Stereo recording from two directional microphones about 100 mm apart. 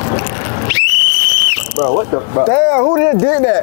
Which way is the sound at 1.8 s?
30° left (ahead or behind).